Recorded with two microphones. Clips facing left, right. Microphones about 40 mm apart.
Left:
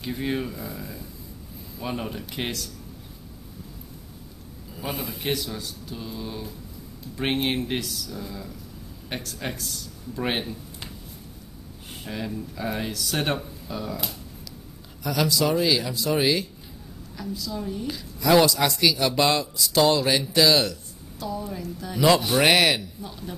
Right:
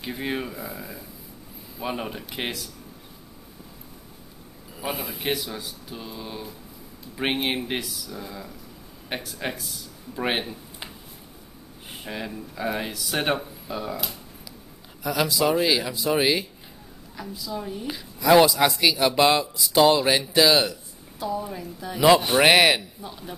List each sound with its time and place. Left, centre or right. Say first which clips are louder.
0.0 s speech: left 1 dB; centre
4.7 s a man's voice: right 1 dB; centre
12.0 s speech: left 1 dB; centre
15.0 s speech: right 1 dB; centre